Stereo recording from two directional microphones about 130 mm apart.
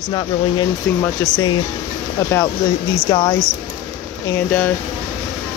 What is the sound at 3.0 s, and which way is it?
Speech, 35° left (ahead or behind).